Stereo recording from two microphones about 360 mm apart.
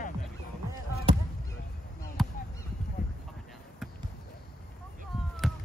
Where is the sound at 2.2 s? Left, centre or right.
Centre.